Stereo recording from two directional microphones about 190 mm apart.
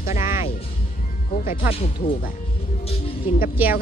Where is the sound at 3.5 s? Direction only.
10° right (ahead or behind).